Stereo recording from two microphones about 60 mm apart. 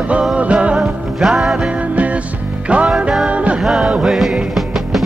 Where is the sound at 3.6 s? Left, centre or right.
Centre.